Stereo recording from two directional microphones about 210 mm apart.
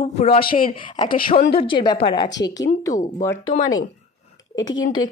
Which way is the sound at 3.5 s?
40° left (ahead or behind).